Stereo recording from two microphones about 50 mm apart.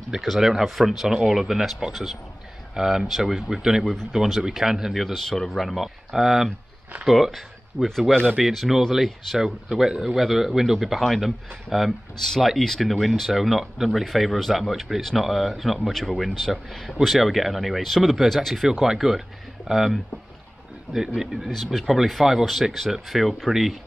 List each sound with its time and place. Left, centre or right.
0.2 s speech: centre
5.0 s speech: centre
12.6 s speech: centre
18.7 s speech: centre
21.1 s speech: centre